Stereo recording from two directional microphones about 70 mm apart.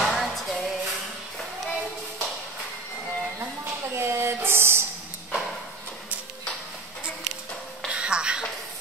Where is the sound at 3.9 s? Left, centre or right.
Right.